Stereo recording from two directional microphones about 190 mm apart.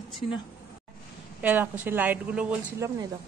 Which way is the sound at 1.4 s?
10° right (ahead or behind).